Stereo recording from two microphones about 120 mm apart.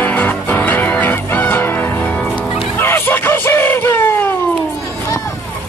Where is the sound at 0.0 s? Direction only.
15° left (ahead or behind).